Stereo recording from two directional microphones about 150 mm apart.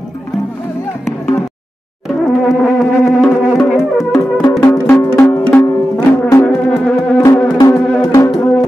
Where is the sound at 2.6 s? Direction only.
Centre (ahead or behind).